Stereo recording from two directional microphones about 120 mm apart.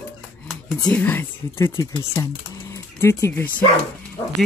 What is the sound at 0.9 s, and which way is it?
Speech, 15° left (ahead or behind).